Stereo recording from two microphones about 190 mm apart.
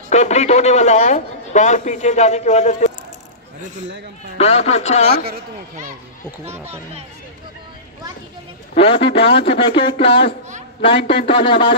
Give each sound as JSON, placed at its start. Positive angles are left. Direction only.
{"t": 0.1, "sound": "a man's voice", "side_deg": 35}
{"t": 4.4, "sound": "a man's voice", "side_deg": 35}
{"t": 5.1, "sound": "speech", "side_deg": -55}
{"t": 6.7, "sound": "speech", "side_deg": -35}
{"t": 8.7, "sound": "a man's voice", "side_deg": 30}